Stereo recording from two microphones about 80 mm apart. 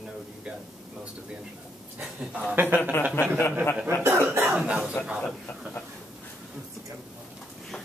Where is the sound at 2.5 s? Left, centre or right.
Right.